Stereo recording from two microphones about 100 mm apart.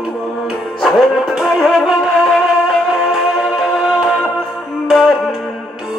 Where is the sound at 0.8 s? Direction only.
Centre (ahead or behind).